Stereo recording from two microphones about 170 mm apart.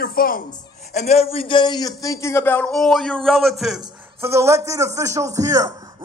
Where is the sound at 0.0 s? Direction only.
60° left (ahead or behind).